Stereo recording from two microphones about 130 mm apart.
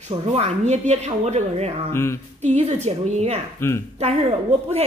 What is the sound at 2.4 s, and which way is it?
A woman's voice, 60° right (ahead or behind).